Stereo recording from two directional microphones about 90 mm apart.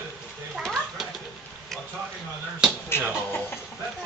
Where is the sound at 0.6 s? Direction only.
5° left (ahead or behind).